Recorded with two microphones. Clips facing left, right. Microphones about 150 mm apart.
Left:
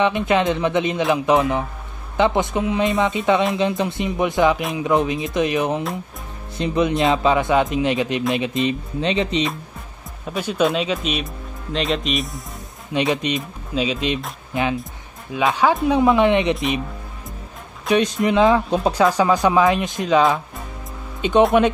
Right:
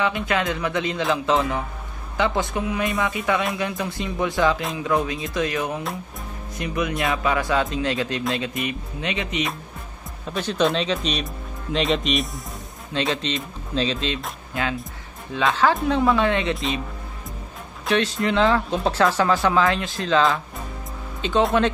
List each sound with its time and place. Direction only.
0.0 s speech: 20° left (ahead or behind)
10.2 s speech: 10° left (ahead or behind)
12.9 s speech: 15° left (ahead or behind)
17.8 s speech: 15° left (ahead or behind)